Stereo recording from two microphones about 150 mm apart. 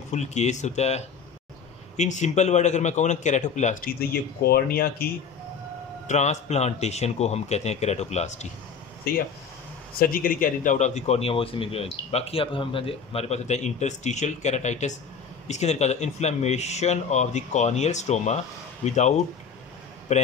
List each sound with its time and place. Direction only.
0.1 s a man's voice: 50° left (ahead or behind); by 5.1 s 85° left
6.0 s a man's voice: 50° left (ahead or behind)
9.1 s speech: 85° left
9.9 s a man's voice: 70° left (ahead or behind); by 20.2 s 50° left (ahead or behind)